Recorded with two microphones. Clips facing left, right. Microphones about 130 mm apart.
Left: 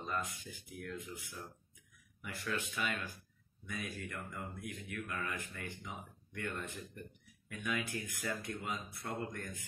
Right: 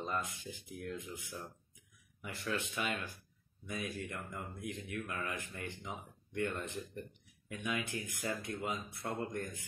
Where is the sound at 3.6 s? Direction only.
35° right (ahead or behind).